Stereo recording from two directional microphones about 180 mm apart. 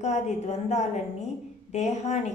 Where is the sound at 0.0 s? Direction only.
40° left (ahead or behind).